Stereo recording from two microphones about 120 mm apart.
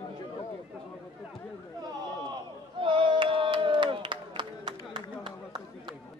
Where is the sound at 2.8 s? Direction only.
45° right (ahead or behind).